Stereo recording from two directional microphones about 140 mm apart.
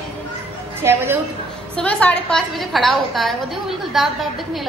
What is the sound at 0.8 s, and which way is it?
Speech, 15° right (ahead or behind).